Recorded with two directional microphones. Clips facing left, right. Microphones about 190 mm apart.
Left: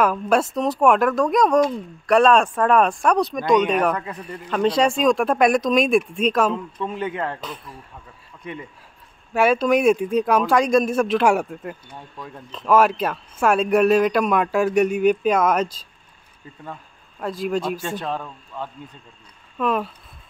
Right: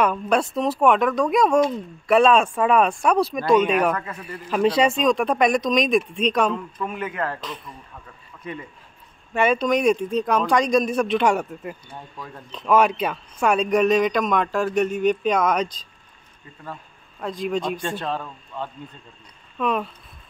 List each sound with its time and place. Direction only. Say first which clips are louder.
0.0 s speech: left 2 dB; 5° left (ahead or behind)
3.9 s speech: left 1 dB; 15° left (ahead or behind)
4.5 s speech: even; 5° right (ahead or behind)
6.5 s a man's voice: left 1 dB; 25° left (ahead or behind)
9.3 s speech: left 2 dB; 5° left (ahead or behind)
17.2 s speech: left 1 dB; 5° left (ahead or behind)